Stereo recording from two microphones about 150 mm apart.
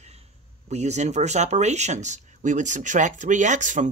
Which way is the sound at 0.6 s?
50° right (ahead or behind).